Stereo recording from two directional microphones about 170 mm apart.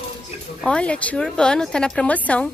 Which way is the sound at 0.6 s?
5° left (ahead or behind).